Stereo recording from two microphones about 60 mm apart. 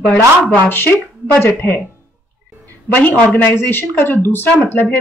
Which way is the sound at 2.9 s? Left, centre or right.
Left.